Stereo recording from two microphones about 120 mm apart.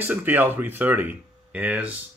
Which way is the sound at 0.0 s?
15° right (ahead or behind).